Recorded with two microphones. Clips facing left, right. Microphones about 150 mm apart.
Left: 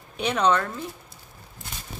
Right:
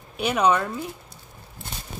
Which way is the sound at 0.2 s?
10° right (ahead or behind).